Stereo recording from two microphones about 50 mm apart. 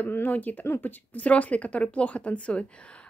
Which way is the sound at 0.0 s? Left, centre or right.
Left.